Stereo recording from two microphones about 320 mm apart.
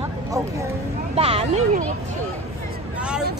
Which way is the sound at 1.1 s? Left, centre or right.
Centre.